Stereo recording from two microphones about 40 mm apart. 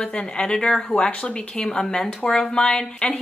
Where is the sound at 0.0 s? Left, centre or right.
Left.